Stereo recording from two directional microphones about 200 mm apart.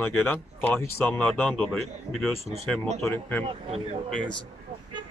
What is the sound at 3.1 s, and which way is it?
Speech, 10° left (ahead or behind).